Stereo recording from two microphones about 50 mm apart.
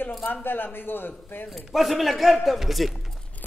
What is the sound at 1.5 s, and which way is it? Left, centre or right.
A man's voice, centre.